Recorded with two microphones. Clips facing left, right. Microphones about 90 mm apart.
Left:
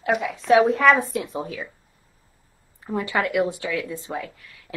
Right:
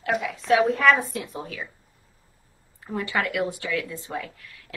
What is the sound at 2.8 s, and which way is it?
A woman's voice, 20° left (ahead or behind).